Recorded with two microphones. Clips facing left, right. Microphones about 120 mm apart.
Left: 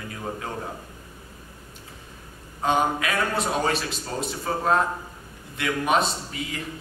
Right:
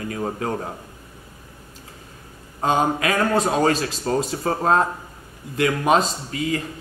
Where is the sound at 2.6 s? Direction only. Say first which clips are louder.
Right 3 dB; 35° right (ahead or behind).